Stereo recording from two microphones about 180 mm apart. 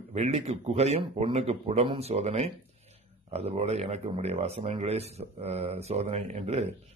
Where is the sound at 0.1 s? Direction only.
35° right (ahead or behind).